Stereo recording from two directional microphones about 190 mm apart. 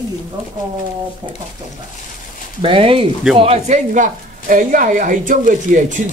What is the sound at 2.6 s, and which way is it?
Speech, 30° right (ahead or behind).